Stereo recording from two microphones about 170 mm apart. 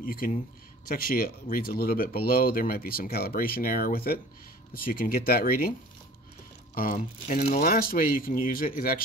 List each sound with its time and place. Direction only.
0.0 s speech: 55° left (ahead or behind)